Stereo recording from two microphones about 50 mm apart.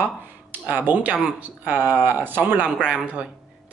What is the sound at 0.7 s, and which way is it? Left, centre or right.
Speech, right.